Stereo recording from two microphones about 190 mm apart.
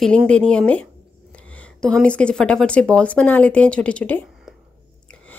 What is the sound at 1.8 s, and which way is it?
Speech, 5° left (ahead or behind).